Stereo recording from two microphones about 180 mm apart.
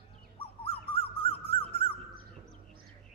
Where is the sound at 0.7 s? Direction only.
30° left (ahead or behind).